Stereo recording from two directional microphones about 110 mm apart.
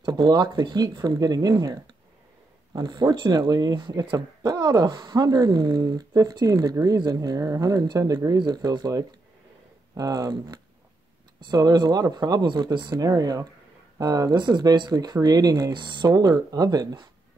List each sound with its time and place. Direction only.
0.0 s speech: 40° right (ahead or behind)